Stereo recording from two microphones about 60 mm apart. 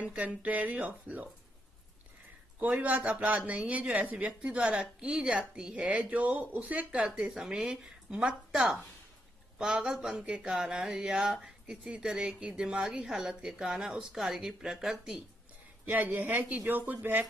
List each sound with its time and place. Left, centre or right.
0.0 s speech: right
2.6 s speech: right
7.1 s a woman's voice: centre
15.9 s speech: right